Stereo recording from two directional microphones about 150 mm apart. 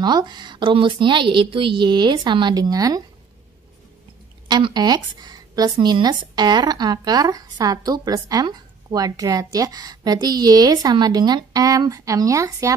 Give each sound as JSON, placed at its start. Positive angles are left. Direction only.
{"t": 0.0, "sound": "a woman's voice", "side_deg": -30}
{"t": 4.5, "sound": "speech", "side_deg": -30}